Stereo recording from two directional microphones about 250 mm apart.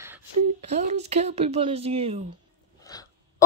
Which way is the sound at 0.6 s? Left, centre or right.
Right.